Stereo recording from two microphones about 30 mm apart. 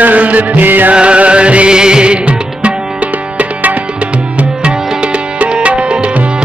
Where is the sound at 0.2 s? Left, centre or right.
Right.